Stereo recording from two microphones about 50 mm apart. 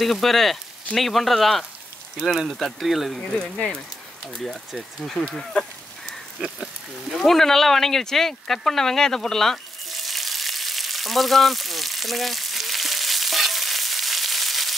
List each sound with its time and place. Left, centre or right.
0.0 s speech: centre
3.2 s speech: centre
3.5 s speech: left
4.4 s speech: centre
5.5 s a sound: left
7.1 s a sound: centre